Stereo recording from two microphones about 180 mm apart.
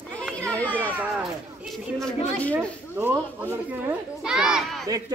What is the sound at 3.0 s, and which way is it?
A child's voice, 10° right (ahead or behind).